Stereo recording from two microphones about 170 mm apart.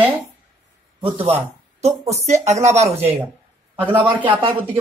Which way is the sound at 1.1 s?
30° right (ahead or behind).